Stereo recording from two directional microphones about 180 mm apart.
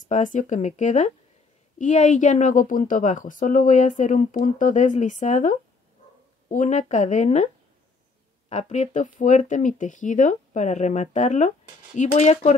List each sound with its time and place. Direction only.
0.0 s a woman's voice: 45° left (ahead or behind)
8.5 s speech: 40° left (ahead or behind)